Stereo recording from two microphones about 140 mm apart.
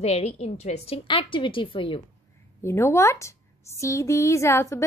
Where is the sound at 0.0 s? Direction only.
50° left (ahead or behind).